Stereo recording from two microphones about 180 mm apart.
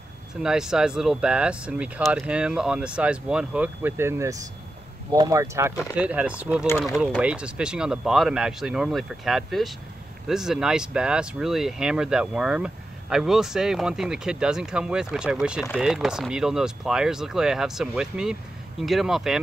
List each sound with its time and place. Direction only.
0.4 s speech: 5° right (ahead or behind)